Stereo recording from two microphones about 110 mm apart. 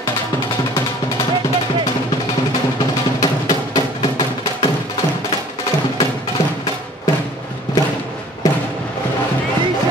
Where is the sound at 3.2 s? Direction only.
35° left (ahead or behind).